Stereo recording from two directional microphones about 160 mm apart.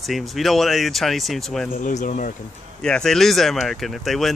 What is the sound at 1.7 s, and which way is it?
Speech, 55° left (ahead or behind).